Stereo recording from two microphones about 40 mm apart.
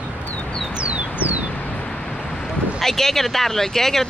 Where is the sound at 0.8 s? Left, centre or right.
Right.